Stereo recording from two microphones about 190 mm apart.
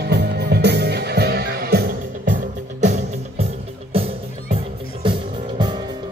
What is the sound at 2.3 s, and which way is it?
Music, 40° right (ahead or behind).